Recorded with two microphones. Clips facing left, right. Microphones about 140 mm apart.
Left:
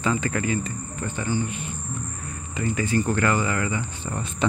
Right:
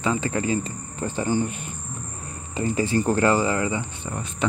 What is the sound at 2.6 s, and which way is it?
Speech, 35° right (ahead or behind).